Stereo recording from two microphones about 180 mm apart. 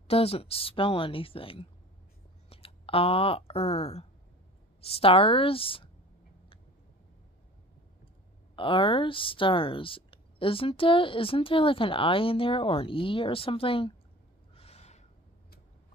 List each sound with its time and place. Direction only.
0.1 s a woman's voice: 35° left (ahead or behind)
8.5 s speech: 30° left (ahead or behind)
14.5 s gasp: 35° left (ahead or behind)